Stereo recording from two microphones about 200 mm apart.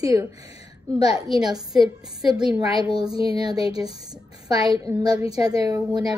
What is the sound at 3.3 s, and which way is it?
A woman's voice, 20° right (ahead or behind).